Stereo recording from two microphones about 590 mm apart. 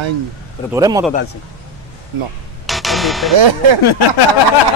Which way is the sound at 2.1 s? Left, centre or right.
Right.